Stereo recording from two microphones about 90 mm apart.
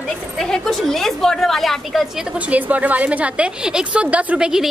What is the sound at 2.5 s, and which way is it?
A woman's voice, 15° right (ahead or behind).